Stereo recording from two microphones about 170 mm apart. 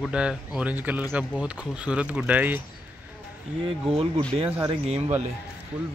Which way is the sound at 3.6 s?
35° right (ahead or behind).